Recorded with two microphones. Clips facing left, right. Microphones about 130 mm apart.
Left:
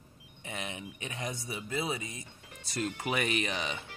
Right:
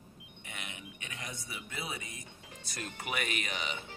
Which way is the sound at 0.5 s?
30° left (ahead or behind).